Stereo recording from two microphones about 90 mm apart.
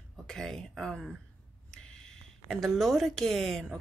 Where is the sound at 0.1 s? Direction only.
5° left (ahead or behind).